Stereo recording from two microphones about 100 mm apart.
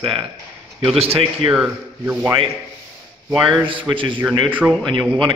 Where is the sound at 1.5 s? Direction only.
10° right (ahead or behind).